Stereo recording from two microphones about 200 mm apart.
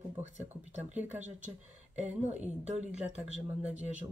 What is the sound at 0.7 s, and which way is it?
Speech, 35° right (ahead or behind).